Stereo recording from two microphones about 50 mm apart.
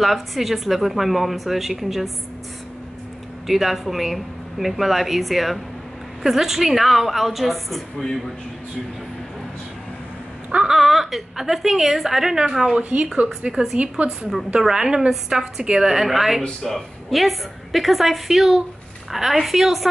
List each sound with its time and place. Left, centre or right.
0.0 s a woman's voice: centre
3.4 s a woman's voice: centre
10.6 s a woman's voice: centre
12.7 s a woman's voice: right
14.6 s a woman's voice: centre